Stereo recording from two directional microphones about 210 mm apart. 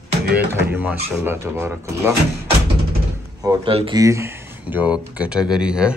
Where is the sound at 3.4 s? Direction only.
15° right (ahead or behind).